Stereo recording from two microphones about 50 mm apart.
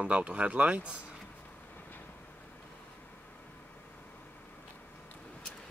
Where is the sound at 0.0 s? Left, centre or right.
Right.